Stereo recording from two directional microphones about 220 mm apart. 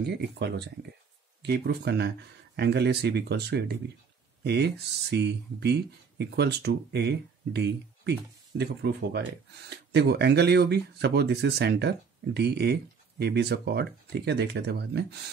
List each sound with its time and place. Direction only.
0.0 s speech: 50° right (ahead or behind)